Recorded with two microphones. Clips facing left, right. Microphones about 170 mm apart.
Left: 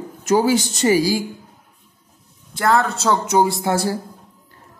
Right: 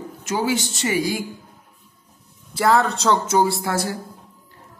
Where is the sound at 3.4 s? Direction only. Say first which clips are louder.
Left 2 dB; 20° left (ahead or behind).